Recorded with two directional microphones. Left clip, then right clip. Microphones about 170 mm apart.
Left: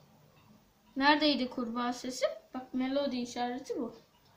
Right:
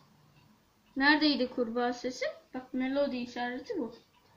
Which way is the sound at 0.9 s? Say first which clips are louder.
Right 1 dB; 35° left (ahead or behind).